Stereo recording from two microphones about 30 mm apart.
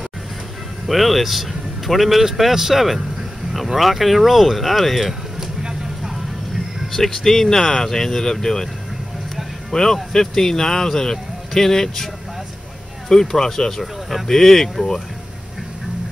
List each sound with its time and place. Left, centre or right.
0.8 s speech: centre
5.4 s vehicle: centre
6.9 s speech: centre
9.7 s speech: centre
13.1 s speech: centre